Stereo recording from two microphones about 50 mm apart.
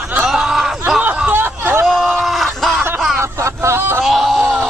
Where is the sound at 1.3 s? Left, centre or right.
Right.